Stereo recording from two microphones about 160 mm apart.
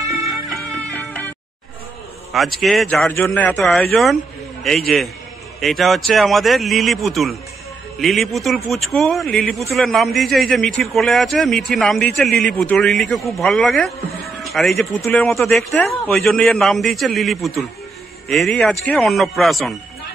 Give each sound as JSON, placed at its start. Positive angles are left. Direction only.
{"t": 0.0, "sound": "music", "side_deg": -20}
{"t": 2.3, "sound": "a man's voice", "side_deg": 0}
{"t": 3.1, "sound": "a man's voice", "side_deg": 15}
{"t": 3.9, "sound": "a man's voice", "side_deg": 0}
{"t": 16.1, "sound": "a man's voice", "side_deg": 0}